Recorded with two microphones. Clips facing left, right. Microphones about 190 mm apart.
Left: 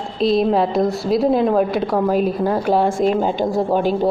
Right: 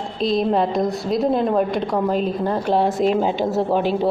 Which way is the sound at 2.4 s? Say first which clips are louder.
Left 3 dB; 40° left (ahead or behind).